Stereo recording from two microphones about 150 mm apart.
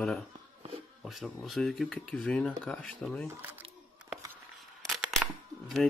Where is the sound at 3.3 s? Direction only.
15° right (ahead or behind).